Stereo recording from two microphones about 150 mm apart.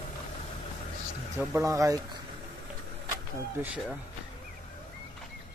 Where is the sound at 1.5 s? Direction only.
20° right (ahead or behind).